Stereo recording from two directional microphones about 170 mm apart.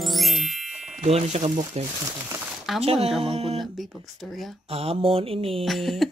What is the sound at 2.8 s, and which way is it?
Mantra, 35° right (ahead or behind).